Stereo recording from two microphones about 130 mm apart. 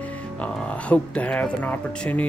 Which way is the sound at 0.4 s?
10° left (ahead or behind).